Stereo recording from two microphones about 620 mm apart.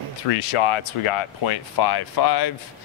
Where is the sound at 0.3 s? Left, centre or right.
Left.